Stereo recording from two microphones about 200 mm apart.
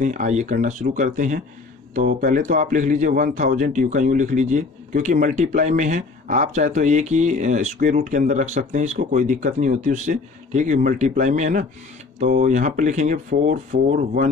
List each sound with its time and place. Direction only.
0.0 s speech: 40° right (ahead or behind)